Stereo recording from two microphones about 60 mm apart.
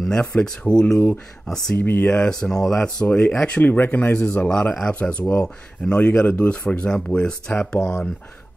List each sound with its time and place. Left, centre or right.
0.1 s speech: centre
1.8 s speech: left
2.0 s speech: centre
3.6 s speech: left
4.5 s speech: centre